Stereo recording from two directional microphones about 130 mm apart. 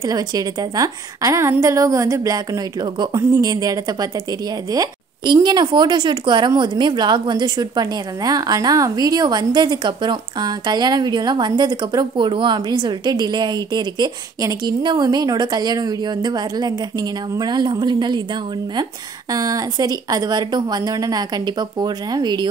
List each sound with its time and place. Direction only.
0.0 s speech: 30° right (ahead or behind)
19.3 s speech: 30° right (ahead or behind)